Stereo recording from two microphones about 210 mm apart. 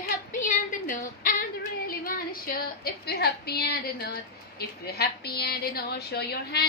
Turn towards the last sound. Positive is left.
turn(degrees=50)  # may be behind; listen again after turning